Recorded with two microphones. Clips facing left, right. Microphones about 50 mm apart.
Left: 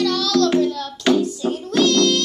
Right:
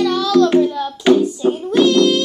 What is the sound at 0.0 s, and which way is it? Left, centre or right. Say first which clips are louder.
Music: right 4 dB; centre.